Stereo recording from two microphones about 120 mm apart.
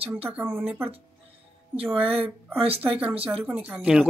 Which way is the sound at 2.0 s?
50° right (ahead or behind).